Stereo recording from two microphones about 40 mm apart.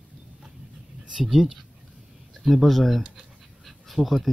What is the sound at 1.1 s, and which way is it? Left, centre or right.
Speech, centre.